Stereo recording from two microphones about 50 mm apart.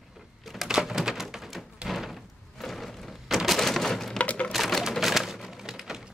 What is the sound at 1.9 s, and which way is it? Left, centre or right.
Slam, centre.